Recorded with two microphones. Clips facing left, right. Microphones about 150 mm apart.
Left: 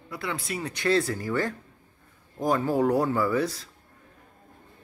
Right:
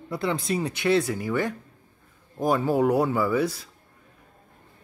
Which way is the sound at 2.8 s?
5° right (ahead or behind).